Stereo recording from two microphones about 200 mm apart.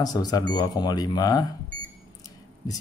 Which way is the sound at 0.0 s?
20° left (ahead or behind).